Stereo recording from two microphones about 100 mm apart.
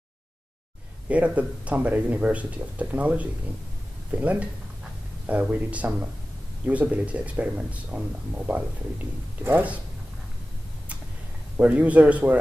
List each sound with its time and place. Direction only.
1.0 s speech: 15° right (ahead or behind)
9.4 s speech: 15° right (ahead or behind)
11.5 s speech: 15° right (ahead or behind)